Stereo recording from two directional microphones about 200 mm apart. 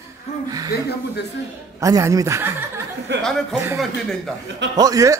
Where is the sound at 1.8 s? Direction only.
15° right (ahead or behind).